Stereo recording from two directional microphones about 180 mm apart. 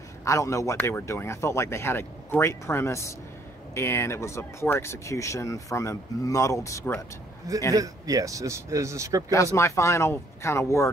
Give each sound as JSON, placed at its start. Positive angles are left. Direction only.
{"t": 0.2, "sound": "speech", "side_deg": 15}
{"t": 7.7, "sound": "speech", "side_deg": -20}
{"t": 9.3, "sound": "speech", "side_deg": 15}